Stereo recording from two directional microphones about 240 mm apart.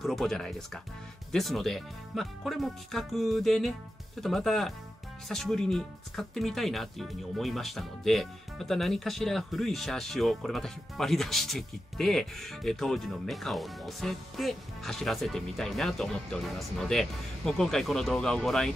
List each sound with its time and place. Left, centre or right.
0.0 s speech: centre